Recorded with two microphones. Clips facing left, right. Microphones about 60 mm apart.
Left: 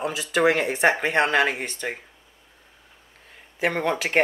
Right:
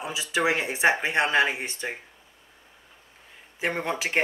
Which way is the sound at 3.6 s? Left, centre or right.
Left.